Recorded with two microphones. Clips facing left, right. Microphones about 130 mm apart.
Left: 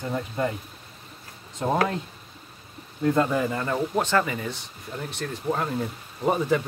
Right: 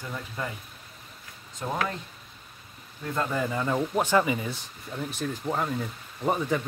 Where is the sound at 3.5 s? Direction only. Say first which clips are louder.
Left 1 dB; 5° right (ahead or behind).